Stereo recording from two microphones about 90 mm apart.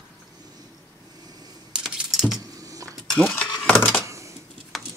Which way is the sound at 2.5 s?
40° right (ahead or behind).